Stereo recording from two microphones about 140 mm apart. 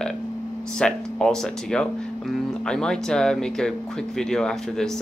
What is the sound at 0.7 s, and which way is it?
Speech, 5° left (ahead or behind).